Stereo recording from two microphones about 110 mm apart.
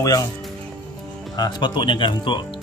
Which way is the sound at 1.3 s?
40° left (ahead or behind).